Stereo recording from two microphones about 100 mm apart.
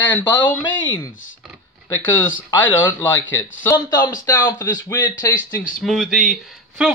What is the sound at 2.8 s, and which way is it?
Speech, 30° left (ahead or behind).